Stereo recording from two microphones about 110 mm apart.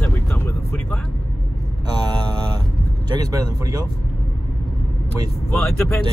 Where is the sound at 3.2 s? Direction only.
35° right (ahead or behind).